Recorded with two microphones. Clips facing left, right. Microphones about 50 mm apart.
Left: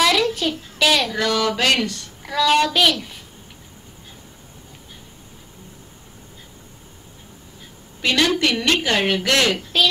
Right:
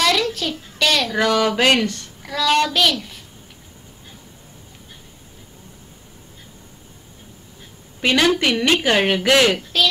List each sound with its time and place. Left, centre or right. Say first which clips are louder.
0.0 s a sound: left 1 dB; centre
1.1 s speech: right 3 dB; centre
2.2 s a child's voice: left 1 dB; centre
8.0 s speech: right 2 dB; centre